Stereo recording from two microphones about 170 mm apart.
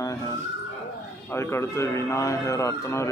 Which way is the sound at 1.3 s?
15° left (ahead or behind).